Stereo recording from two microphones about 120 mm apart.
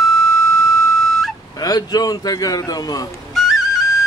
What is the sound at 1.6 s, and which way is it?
A man's voice, 30° left (ahead or behind).